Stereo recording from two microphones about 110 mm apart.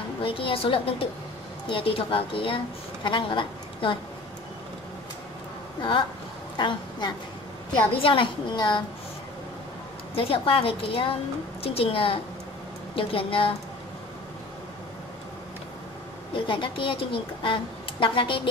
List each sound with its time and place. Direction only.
0.2 s a woman's voice: 55° left (ahead or behind)
5.8 s a woman's voice: 50° left (ahead or behind)
10.1 s a woman's voice: 55° left (ahead or behind)
16.3 s a woman's voice: 50° left (ahead or behind)